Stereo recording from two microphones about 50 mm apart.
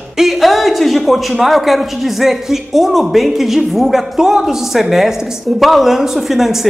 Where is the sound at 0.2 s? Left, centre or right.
Centre.